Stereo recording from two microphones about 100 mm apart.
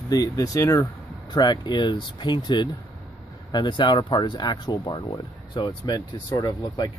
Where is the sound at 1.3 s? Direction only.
45° left (ahead or behind).